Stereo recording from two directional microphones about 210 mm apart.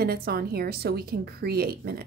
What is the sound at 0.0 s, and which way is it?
A woman's voice, 45° right (ahead or behind).